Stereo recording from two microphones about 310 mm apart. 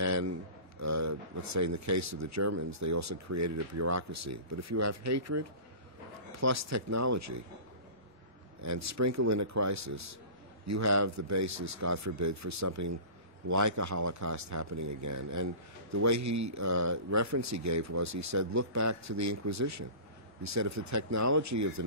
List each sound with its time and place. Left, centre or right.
0.0 s a sound: right
0.7 s speech: right
8.5 s speech: right